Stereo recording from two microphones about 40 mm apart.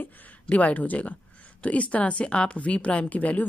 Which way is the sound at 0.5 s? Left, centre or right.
Left.